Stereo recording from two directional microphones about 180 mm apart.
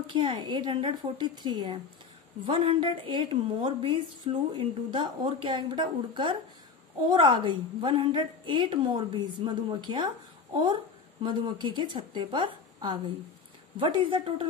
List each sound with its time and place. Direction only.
0.0 s a woman's voice: 25° right (ahead or behind)
11.4 s a woman's voice: 25° right (ahead or behind)